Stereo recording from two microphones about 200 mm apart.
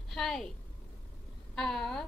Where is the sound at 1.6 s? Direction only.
Centre (ahead or behind).